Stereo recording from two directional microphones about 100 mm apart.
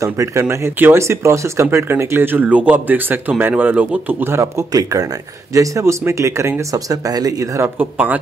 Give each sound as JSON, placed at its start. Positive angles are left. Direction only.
{"t": 0.0, "sound": "speech", "side_deg": -35}
{"t": 7.6, "sound": "speech", "side_deg": -20}